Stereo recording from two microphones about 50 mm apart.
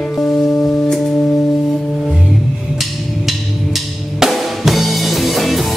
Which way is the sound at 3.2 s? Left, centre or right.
Centre.